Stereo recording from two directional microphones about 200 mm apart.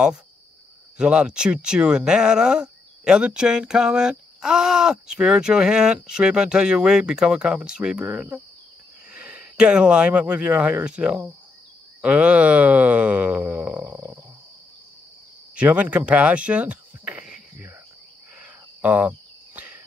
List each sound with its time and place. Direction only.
0.9 s speech: 5° right (ahead or behind)
15.5 s speech: 5° right (ahead or behind)
18.4 s cricket: 5° right (ahead or behind)